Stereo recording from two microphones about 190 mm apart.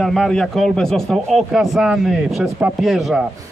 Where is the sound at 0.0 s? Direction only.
Centre (ahead or behind).